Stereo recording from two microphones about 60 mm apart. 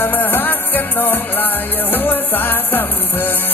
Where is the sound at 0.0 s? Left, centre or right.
Left.